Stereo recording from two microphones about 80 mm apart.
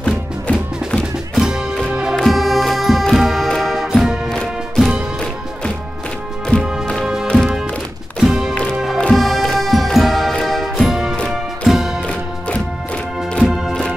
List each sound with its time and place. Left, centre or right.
0.0 s music: centre
1.3 s music: centre
6.6 s music: centre
12.1 s music: centre
13.5 s music: centre